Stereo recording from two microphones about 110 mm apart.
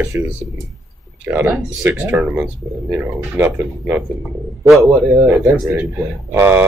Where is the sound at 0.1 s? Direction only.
20° right (ahead or behind).